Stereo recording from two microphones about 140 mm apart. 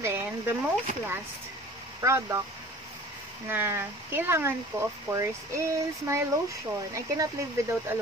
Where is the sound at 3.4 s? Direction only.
15° right (ahead or behind).